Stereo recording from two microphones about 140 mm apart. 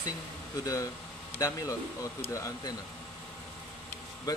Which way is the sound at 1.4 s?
25° left (ahead or behind).